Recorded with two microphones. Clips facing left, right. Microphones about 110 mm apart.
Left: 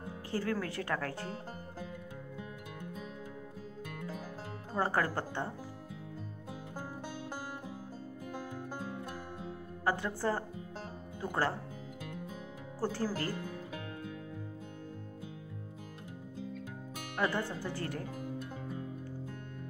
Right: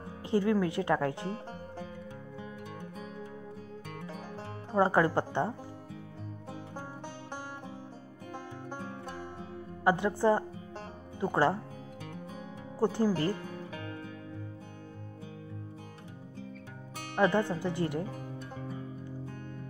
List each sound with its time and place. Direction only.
0.3 s speech: 20° right (ahead or behind)
4.7 s speech: 20° right (ahead or behind)
9.8 s speech: 20° right (ahead or behind)
12.8 s speech: 20° right (ahead or behind)
17.1 s speech: 25° right (ahead or behind)